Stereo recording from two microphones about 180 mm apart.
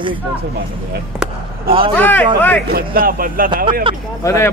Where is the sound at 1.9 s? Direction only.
10° left (ahead or behind).